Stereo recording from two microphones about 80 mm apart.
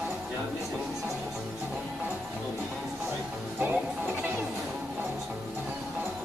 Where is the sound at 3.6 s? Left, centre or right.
Right.